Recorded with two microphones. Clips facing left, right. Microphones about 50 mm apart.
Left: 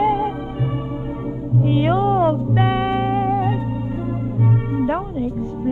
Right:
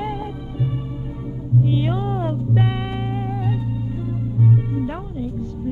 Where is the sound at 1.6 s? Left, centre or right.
Left.